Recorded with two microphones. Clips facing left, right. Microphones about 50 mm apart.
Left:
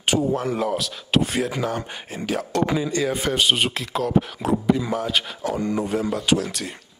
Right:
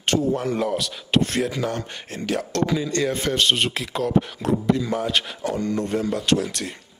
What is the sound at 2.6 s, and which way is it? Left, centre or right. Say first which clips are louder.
Speech: left 1 dB; centre.